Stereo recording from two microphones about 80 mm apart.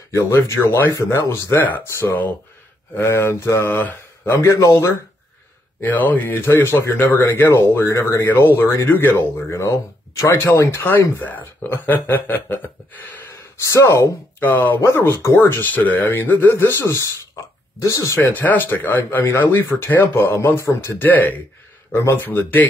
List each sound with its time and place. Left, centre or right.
0.1 s speech: left
4.3 s speech: left
5.9 s speech: left
8.3 s speech: left
13.7 s speech: left
14.4 s speech: left
14.8 s speech: left